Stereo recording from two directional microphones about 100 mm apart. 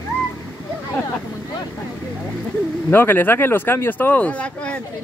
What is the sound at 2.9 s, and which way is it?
Speech, 20° left (ahead or behind).